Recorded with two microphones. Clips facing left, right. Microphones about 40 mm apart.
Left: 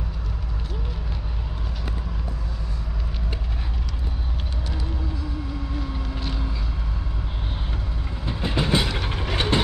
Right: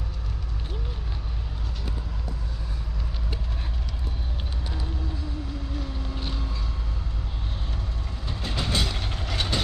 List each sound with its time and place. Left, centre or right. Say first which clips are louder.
8.3 s train: left 6 dB; centre